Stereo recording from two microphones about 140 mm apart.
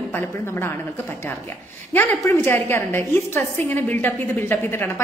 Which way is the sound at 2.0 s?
15° left (ahead or behind).